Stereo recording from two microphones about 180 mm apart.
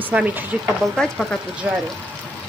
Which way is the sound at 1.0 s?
Centre (ahead or behind).